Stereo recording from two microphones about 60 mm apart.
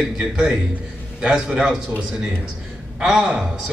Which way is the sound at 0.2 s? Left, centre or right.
Centre.